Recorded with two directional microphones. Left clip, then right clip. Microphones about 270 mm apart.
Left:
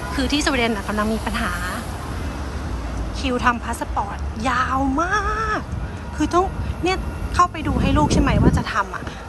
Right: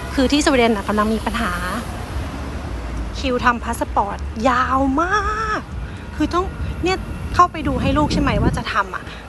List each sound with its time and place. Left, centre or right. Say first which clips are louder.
0.1 s a woman's voice: right 5 dB; centre
3.2 s a woman's voice: right 2 dB; centre